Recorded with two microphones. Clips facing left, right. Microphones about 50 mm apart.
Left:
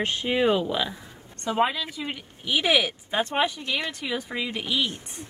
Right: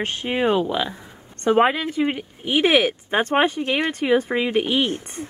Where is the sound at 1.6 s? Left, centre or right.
Right.